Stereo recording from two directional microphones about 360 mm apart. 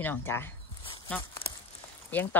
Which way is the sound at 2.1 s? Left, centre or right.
Centre.